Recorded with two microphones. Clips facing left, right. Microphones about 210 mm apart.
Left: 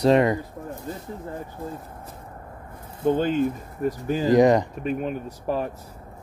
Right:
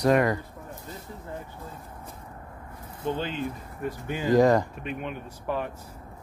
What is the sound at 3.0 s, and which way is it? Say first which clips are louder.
Speech: left 9 dB; 50° left (ahead or behind).